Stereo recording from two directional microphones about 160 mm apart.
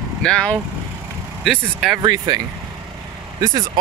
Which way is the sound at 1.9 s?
25° right (ahead or behind).